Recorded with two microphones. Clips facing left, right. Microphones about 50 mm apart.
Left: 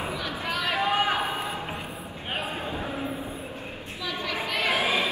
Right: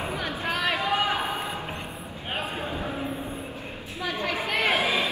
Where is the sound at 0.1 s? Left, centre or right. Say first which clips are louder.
Right 1 dB; right.